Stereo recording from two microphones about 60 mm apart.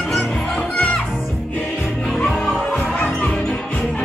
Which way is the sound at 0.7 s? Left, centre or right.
Left.